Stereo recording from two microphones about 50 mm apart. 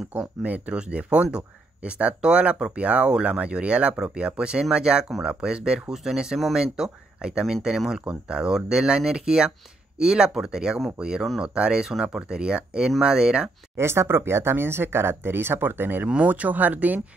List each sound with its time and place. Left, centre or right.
0.1 s speech: right; by 7.5 s centre
7.6 s speech: centre
8.0 s speech: centre
13.7 s speech: right
16.3 s speech: right